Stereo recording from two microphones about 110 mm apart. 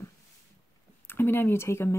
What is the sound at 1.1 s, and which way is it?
Speech, 20° left (ahead or behind).